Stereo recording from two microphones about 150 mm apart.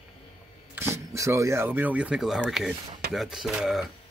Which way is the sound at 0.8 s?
15° right (ahead or behind).